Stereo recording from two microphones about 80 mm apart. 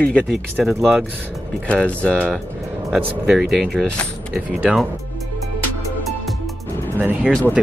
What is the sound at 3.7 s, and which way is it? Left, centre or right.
Speech, centre.